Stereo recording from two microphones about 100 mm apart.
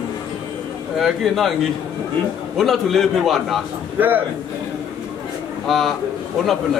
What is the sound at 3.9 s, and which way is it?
Speech, 20° right (ahead or behind).